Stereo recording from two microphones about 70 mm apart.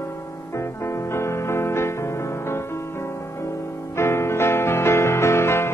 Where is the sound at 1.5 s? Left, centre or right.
Left.